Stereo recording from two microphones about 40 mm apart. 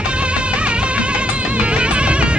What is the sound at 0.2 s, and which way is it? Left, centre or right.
Music, right.